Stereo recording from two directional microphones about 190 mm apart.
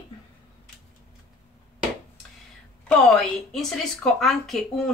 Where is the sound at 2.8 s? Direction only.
5° left (ahead or behind).